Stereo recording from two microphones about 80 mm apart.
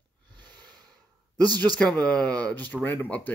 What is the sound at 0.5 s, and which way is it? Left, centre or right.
Snort, centre.